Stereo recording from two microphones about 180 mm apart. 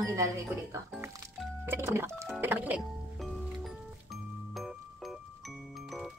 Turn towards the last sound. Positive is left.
turn(degrees=0)  # may be behind; listen again after turning